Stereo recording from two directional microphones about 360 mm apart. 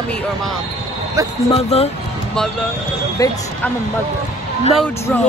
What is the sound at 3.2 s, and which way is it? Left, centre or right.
Speech, centre.